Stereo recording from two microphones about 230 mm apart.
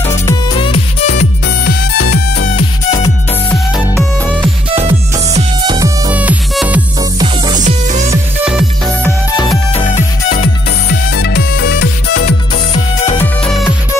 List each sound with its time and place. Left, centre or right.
0.1 s music: centre; by 2.4 s left
3.4 s music: centre
4.6 s music: right
6.1 s music: centre
7.0 s music: centre
7.5 s music: right
8.1 s music: centre
9.8 s music: left
12.3 s music: left
13.2 s music: centre